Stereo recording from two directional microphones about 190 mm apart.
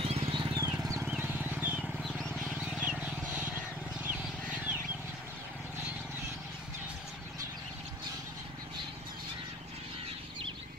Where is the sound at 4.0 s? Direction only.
5° right (ahead or behind).